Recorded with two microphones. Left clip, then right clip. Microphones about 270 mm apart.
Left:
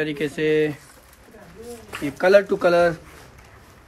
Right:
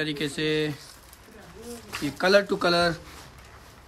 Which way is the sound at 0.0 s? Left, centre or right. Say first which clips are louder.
Left 5 dB; centre.